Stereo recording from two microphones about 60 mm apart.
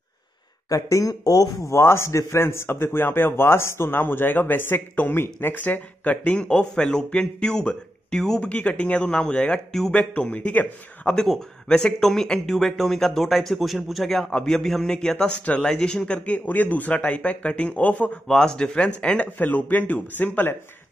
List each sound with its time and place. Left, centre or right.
0.7 s speech: left
1.7 s a man's voice: left; by 8.5 s centre
8.5 s speech: left
11.1 s speech: centre
16.4 s speech: left
18.3 s speech: centre
19.3 s a man's voice: left